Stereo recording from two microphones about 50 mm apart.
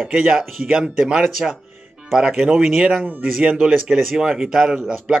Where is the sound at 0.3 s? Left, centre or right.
Centre.